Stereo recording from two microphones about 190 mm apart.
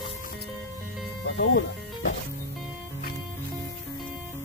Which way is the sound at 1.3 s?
70° left (ahead or behind).